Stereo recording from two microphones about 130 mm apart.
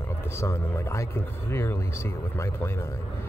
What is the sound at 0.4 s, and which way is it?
Speech, 20° left (ahead or behind).